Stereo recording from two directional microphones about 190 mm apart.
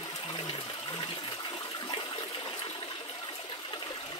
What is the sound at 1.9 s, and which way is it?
Water, 25° left (ahead or behind).